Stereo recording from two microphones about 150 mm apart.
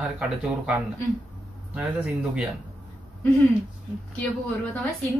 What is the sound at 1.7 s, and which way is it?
Speech, 5° right (ahead or behind).